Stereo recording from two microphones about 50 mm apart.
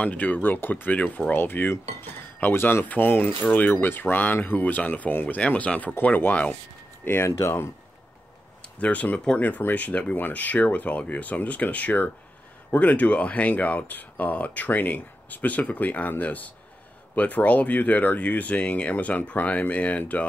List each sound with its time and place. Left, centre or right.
0.0 s speech: left
0.9 s speech: left
7.2 s speech: left
8.7 s speech: left